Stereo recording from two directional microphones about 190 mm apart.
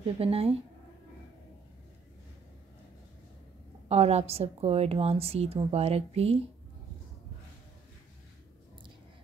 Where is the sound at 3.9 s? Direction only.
35° right (ahead or behind).